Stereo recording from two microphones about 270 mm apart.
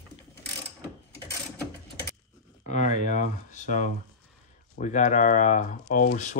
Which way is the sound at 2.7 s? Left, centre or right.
Left.